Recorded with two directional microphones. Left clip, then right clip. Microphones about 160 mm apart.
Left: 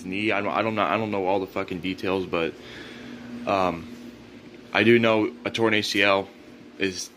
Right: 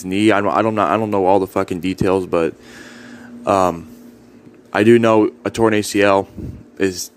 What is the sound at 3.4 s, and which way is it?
Speech, 65° right (ahead or behind).